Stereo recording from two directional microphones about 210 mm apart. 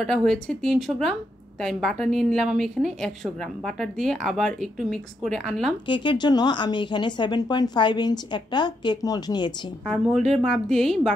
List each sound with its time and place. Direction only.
0.0 s a woman's voice: centre (ahead or behind)
5.9 s a woman's voice: 20° left (ahead or behind)
9.8 s a woman's voice: centre (ahead or behind)